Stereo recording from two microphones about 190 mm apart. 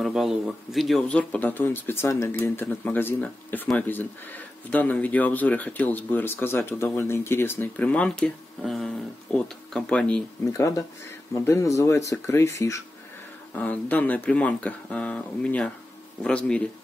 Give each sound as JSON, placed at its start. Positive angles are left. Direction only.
{"t": 0.0, "sound": "a man's voice", "side_deg": 0}